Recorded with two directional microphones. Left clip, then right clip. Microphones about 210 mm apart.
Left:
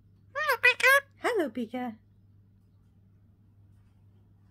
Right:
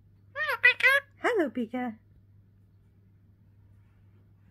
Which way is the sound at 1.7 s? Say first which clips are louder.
Right 1 dB; 20° right (ahead or behind).